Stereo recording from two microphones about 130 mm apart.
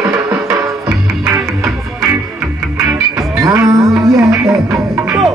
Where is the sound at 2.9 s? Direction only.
25° right (ahead or behind).